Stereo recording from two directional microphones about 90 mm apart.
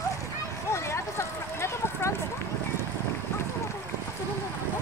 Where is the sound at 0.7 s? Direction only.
30° left (ahead or behind).